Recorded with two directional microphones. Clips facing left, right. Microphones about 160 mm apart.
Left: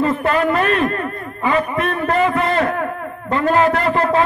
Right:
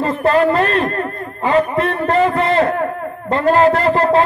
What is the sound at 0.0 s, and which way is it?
A man's voice, 35° right (ahead or behind).